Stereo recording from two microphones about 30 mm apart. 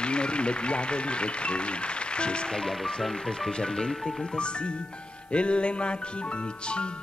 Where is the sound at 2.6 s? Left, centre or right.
Centre.